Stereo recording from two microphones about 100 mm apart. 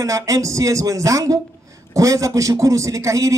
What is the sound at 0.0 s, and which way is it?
A man's voice, 35° right (ahead or behind).